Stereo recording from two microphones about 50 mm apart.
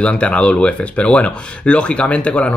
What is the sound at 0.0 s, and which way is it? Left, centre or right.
Speech, left.